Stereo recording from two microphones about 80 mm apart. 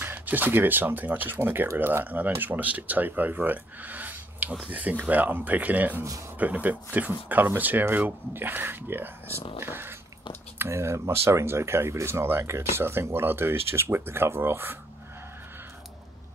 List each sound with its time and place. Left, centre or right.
0.0 s speech: right